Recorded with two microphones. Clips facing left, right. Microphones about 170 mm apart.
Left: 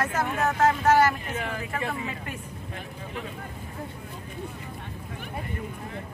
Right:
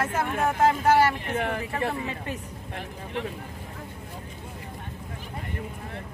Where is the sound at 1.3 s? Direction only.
60° right (ahead or behind).